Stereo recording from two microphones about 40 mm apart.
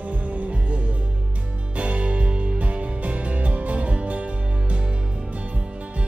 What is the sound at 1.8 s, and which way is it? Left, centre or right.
Music, right.